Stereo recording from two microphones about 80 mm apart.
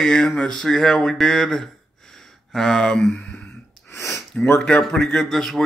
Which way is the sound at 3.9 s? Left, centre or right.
Left.